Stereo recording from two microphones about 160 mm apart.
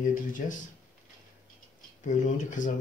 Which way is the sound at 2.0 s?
50° left (ahead or behind).